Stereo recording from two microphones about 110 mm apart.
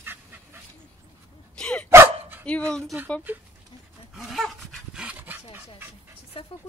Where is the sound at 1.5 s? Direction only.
10° left (ahead or behind).